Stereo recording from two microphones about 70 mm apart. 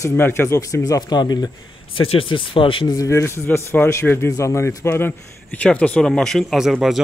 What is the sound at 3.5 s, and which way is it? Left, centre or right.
Speech, left.